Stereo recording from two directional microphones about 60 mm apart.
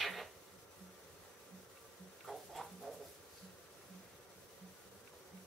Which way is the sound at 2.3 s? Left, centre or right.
Centre.